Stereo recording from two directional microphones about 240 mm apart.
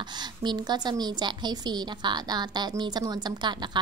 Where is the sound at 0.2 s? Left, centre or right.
Centre.